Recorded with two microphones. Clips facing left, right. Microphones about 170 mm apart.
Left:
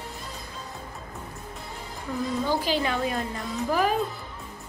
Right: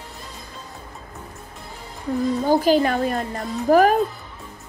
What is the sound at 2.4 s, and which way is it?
A woman's voice, 45° right (ahead or behind).